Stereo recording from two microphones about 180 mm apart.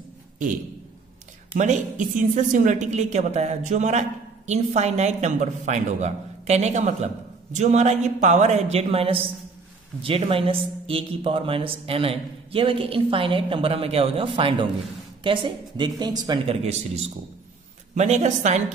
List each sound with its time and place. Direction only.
1.6 s speech: 45° right (ahead or behind); by 16.5 s 25° right (ahead or behind)
16.6 s speech: 35° right (ahead or behind)